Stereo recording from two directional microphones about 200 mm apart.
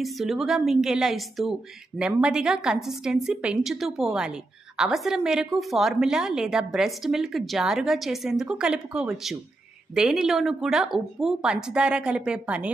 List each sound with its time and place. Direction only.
0.0 s a woman's voice: centre (ahead or behind)